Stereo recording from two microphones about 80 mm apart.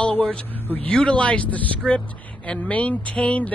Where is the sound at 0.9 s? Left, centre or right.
Centre.